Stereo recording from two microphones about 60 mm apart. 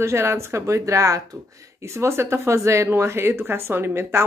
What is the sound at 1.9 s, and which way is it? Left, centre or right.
Speech, right.